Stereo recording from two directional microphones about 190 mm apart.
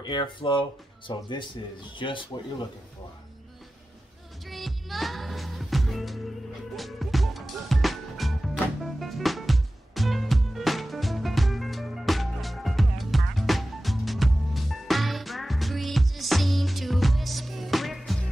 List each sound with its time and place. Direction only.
0.0 s speech: 25° left (ahead or behind)
4.5 s music: centre (ahead or behind)